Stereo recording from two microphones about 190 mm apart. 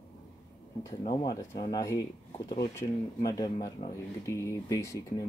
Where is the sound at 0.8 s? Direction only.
25° left (ahead or behind).